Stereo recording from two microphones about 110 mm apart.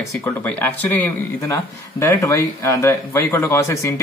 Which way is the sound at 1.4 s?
25° left (ahead or behind).